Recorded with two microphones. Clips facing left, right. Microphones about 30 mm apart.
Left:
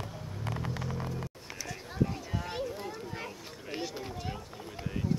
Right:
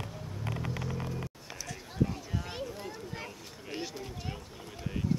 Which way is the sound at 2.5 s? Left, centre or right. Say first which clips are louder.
Left 3 dB; centre.